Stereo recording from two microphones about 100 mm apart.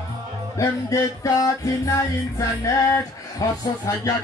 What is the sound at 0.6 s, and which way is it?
Music, 30° left (ahead or behind).